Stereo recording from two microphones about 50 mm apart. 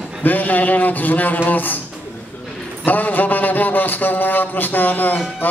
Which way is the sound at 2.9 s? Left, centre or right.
Left.